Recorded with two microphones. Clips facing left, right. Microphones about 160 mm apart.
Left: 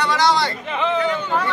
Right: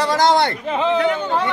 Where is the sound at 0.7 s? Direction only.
30° right (ahead or behind).